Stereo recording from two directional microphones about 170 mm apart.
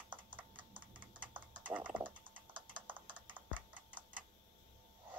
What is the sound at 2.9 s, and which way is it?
Typing, 30° right (ahead or behind).